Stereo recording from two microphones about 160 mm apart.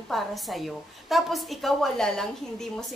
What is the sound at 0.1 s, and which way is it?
A woman's voice, centre (ahead or behind).